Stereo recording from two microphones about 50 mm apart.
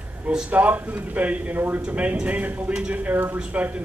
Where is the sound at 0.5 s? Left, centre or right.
Right.